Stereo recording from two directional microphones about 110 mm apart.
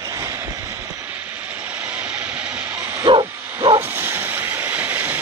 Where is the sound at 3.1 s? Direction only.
50° right (ahead or behind).